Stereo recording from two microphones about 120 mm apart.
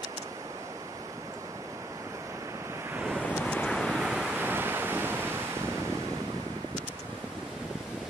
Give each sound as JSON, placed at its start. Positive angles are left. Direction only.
{"t": 2.9, "sound": "waves", "side_deg": -15}
{"t": 3.2, "sound": "waves", "side_deg": 10}
{"t": 4.4, "sound": "waves", "side_deg": -15}